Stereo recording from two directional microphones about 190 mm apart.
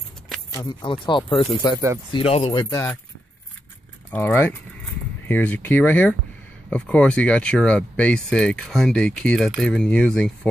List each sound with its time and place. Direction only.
0.5 s speech: 20° left (ahead or behind)
4.1 s speech: 10° left (ahead or behind)